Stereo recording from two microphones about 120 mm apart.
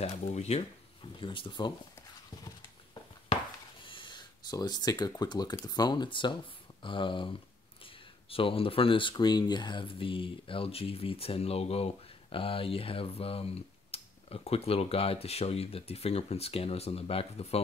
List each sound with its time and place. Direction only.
0.0 s speech: 65° left (ahead or behind)
1.2 s speech: 45° left (ahead or behind)
2.4 s a sound: 35° left (ahead or behind)
3.8 s speech: 45° left (ahead or behind)